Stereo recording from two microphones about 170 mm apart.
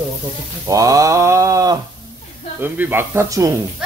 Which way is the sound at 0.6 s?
20° right (ahead or behind).